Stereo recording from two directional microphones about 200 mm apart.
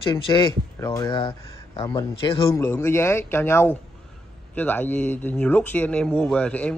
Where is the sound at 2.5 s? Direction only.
15° left (ahead or behind).